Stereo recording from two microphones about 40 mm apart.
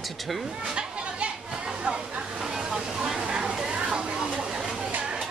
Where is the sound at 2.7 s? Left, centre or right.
Centre.